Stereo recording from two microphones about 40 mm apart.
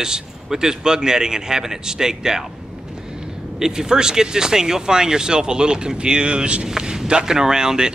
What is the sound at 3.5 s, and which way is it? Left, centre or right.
A man's voice, centre.